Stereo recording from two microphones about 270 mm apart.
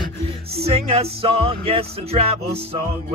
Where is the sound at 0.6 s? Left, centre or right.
Right.